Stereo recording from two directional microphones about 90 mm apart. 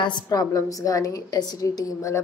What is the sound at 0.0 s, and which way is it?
A woman's voice, 50° left (ahead or behind).